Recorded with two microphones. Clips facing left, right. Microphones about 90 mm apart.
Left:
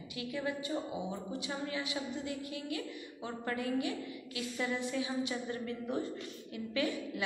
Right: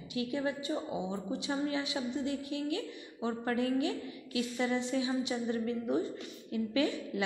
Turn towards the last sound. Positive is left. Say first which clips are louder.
# right 3 dB
turn(degrees=-25)  # may be behind; listen again after turning